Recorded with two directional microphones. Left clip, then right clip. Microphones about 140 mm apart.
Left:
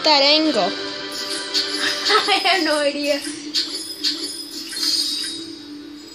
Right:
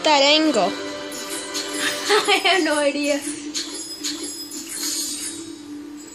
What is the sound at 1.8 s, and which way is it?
Speech, 50° right (ahead or behind).